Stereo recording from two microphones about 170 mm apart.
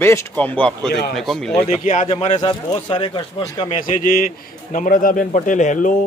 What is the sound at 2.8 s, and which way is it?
Speech, 25° left (ahead or behind).